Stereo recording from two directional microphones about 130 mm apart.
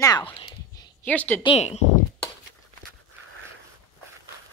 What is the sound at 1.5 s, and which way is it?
Speech, 60° left (ahead or behind).